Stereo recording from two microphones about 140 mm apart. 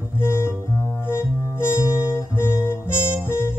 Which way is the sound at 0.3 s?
15° left (ahead or behind).